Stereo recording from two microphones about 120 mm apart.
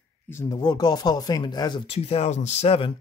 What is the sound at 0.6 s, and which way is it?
Speech, 35° left (ahead or behind).